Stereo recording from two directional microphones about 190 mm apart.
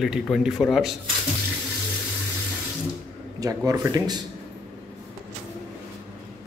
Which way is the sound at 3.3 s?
20° right (ahead or behind).